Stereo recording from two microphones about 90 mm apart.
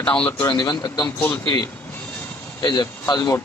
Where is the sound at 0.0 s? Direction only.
15° left (ahead or behind).